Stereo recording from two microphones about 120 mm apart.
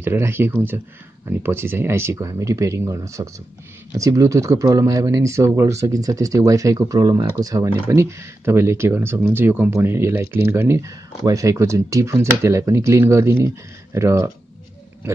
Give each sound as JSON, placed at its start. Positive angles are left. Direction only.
{"t": 0.0, "sound": "speech", "side_deg": -20}